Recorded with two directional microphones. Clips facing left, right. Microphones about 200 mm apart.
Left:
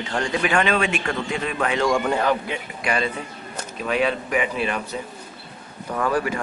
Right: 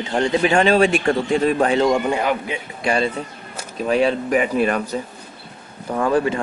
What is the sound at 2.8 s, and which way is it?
A man's voice, 30° right (ahead or behind).